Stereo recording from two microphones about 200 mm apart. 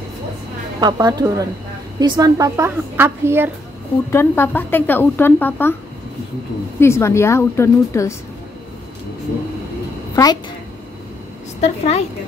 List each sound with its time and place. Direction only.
0.7 s a woman's voice: 20° right (ahead or behind)
4.1 s speech: 10° left (ahead or behind)
6.8 s speech: 15° left (ahead or behind)
10.1 s a woman's voice: 20° left (ahead or behind)
11.6 s a woman's voice: 30° left (ahead or behind)